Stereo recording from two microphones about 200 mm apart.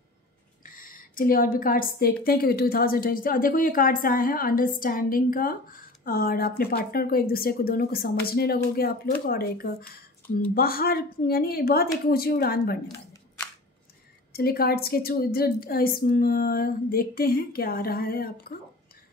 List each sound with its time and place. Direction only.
0.7 s speech: 45° left (ahead or behind)
14.3 s speech: 50° left (ahead or behind)